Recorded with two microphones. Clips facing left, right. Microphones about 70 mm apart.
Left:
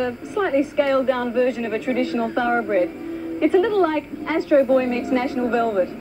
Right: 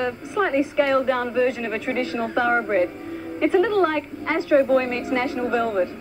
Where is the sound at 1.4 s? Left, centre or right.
Right.